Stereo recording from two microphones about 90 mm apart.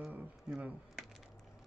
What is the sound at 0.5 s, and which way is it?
Speech, 5° right (ahead or behind).